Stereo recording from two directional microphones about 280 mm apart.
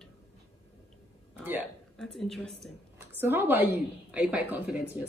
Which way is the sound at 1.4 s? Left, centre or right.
Centre.